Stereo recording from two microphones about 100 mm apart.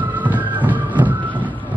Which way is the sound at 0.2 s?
15° right (ahead or behind).